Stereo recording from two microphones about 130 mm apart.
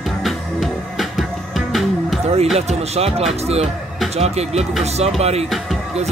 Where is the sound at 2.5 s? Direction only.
50° right (ahead or behind).